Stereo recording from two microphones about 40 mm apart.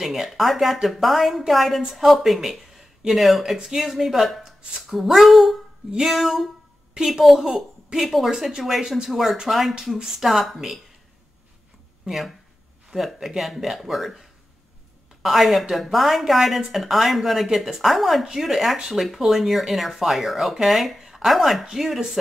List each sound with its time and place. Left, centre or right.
0.0 s speech: centre
3.5 s speech: centre
4.4 s a sound: right
4.8 s speech: centre
12.0 s speech: centre
15.2 s speech: centre